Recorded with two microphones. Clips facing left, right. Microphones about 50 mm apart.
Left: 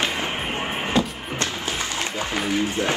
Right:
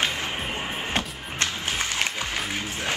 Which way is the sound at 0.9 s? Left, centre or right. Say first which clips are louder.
Left 6 dB; right.